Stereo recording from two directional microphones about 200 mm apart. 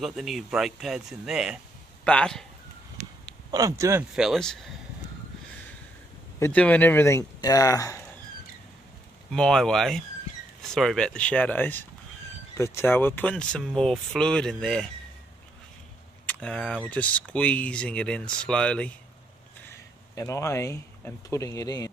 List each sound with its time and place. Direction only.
0.0 s speech: centre (ahead or behind)
3.0 s a sound: 40° right (ahead or behind)
3.5 s speech: 15° right (ahead or behind)
4.1 s speech: centre (ahead or behind)
6.4 s speech: 5° left (ahead or behind)
9.3 s speech: 5° left (ahead or behind)
16.3 s speech: 5° left (ahead or behind)
20.2 s speech: 15° left (ahead or behind)